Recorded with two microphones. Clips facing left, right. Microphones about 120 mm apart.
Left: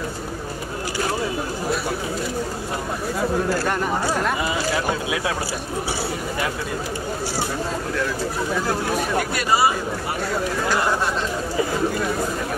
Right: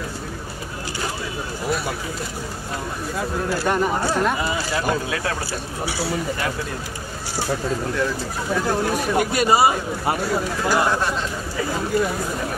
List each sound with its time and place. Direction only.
3.6 s speech: 5° right (ahead or behind)
8.5 s speech: centre (ahead or behind)
9.1 s speech: 20° right (ahead or behind)